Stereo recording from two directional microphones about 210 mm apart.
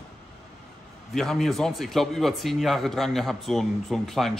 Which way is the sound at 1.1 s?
Centre (ahead or behind).